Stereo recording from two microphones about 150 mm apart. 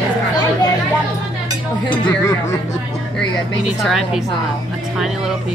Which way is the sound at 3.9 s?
Centre (ahead or behind).